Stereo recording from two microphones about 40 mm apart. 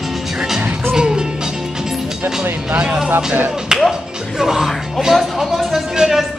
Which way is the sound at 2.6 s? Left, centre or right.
Right.